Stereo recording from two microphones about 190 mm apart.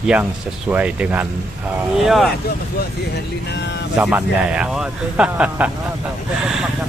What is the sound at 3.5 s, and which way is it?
Speech, 65° left (ahead or behind).